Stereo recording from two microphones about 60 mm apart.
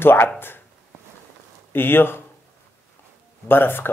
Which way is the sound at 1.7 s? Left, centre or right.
Left.